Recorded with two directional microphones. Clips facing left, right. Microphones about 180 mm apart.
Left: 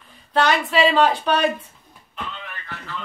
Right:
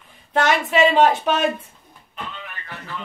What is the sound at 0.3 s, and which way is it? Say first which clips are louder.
A woman's voice: even; 20° right (ahead or behind).